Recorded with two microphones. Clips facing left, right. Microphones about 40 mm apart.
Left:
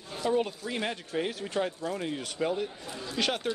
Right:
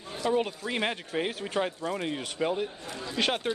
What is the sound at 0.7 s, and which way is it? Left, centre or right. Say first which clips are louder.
A man's voice: right 3 dB; right.